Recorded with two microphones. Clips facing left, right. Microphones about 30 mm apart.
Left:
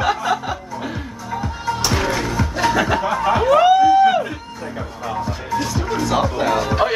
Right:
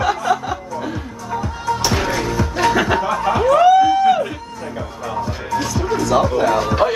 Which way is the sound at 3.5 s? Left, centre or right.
Centre.